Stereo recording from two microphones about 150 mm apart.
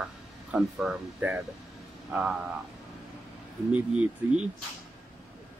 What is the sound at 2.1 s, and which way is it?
Speech, 5° right (ahead or behind).